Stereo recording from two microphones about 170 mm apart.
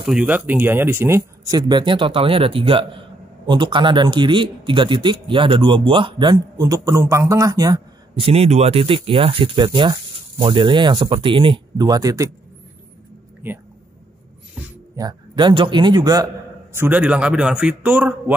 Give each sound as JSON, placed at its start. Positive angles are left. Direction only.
{"t": 0.0, "sound": "a man's voice", "side_deg": -5}
{"t": 1.7, "sound": "a man's voice", "side_deg": -30}
{"t": 8.2, "sound": "a man's voice", "side_deg": -35}
{"t": 15.0, "sound": "a man's voice", "side_deg": -25}
{"t": 16.7, "sound": "a man's voice", "side_deg": -10}